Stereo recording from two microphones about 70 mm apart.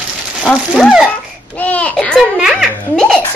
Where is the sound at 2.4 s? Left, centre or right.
Centre.